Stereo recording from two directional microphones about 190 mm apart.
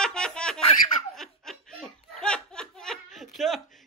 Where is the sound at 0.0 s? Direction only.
5° left (ahead or behind).